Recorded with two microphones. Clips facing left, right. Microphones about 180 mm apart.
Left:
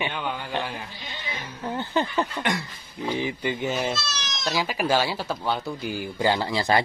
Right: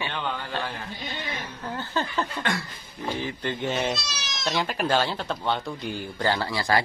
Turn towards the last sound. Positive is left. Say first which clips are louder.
# left 2 dB
turn(degrees=20)  # may be behind; listen again after turning